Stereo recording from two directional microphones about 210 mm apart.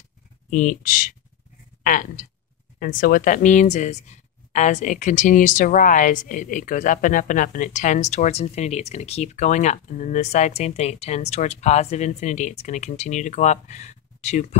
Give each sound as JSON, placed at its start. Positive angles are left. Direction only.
{"t": 0.5, "sound": "speech", "side_deg": 40}
{"t": 1.8, "sound": "a sound", "side_deg": 40}
{"t": 2.8, "sound": "speech", "side_deg": 40}